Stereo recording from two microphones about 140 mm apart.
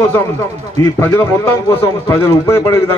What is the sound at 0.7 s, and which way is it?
A man's voice, 20° left (ahead or behind).